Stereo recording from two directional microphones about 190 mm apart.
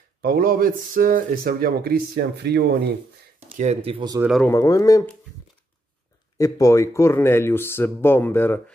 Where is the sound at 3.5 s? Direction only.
35° right (ahead or behind).